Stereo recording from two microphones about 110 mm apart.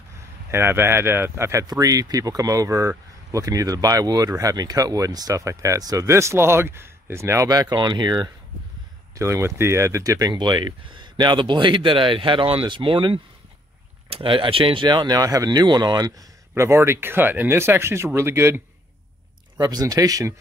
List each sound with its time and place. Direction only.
0.5 s speech: 25° right (ahead or behind)
7.7 s speech: 40° right (ahead or behind)
9.1 s speech: 25° right (ahead or behind)
16.5 s speech: 25° right (ahead or behind)
19.6 s speech: 35° right (ahead or behind)